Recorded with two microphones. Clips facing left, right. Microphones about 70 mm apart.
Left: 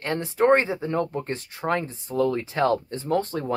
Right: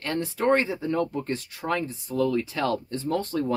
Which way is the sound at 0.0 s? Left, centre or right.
Left.